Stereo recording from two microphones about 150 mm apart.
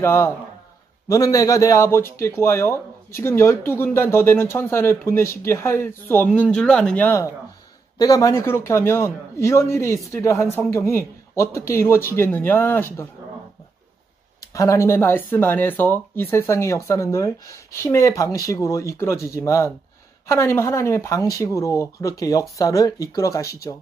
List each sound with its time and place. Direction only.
0.0 s speech: 15° left (ahead or behind)
14.4 s speech: 20° left (ahead or behind)